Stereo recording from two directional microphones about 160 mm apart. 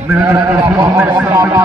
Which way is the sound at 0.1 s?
15° right (ahead or behind).